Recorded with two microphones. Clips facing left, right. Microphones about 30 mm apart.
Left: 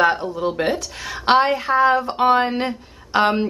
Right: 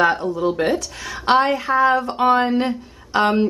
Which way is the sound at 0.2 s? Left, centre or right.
Centre.